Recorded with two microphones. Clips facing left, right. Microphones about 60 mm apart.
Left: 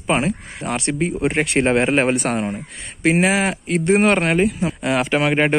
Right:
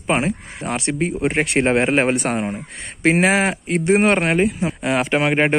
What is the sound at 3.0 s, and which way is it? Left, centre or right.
Speech, right.